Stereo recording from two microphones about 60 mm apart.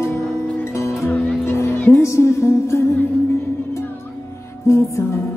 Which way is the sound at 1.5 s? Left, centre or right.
Left.